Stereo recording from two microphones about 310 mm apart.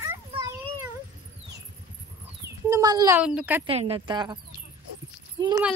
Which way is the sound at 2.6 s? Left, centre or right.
Centre.